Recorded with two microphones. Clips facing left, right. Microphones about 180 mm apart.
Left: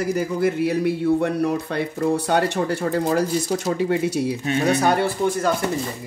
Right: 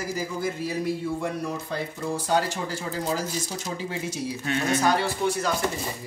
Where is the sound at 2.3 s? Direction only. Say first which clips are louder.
Left 5 dB; 65° left (ahead or behind).